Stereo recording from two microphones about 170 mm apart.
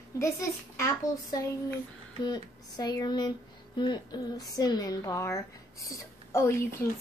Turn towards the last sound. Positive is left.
turn(degrees=15)  # may be behind; listen again after turning